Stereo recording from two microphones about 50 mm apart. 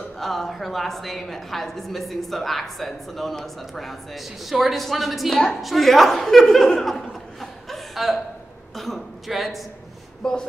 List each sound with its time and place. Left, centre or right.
0.2 s a woman's voice: centre
7.7 s chuckle: centre
8.7 s a sound: centre